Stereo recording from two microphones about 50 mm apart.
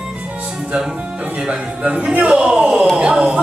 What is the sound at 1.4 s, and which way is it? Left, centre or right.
Speech, right.